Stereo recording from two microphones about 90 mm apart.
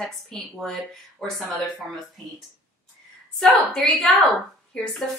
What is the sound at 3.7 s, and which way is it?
A woman's voice, centre (ahead or behind).